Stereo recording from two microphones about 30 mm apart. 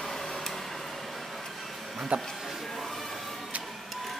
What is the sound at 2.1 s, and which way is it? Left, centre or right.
Speech, right.